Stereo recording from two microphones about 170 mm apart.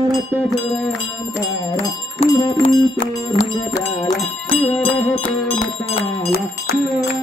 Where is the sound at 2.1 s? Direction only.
30° left (ahead or behind).